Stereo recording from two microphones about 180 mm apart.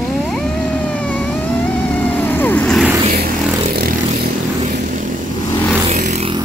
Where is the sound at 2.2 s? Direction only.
10° left (ahead or behind).